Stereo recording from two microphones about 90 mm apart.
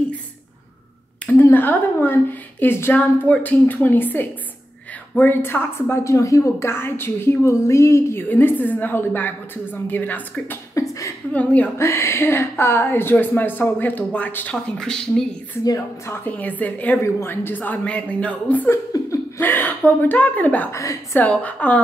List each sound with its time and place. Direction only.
1.3 s a woman's voice: 20° left (ahead or behind)
10.7 s speech: 40° left (ahead or behind)
11.3 s a woman's voice: 15° left (ahead or behind)
11.8 s a woman's voice: 30° left (ahead or behind)
14.8 s a woman's voice: 5° left (ahead or behind)
16.3 s a woman's voice: 15° left (ahead or behind)
18.7 s speech: 30° left (ahead or behind)
19.4 s a woman's voice: 20° left (ahead or behind)
20.7 s a woman's voice: 35° left (ahead or behind)
21.2 s a woman's voice: 15° left (ahead or behind)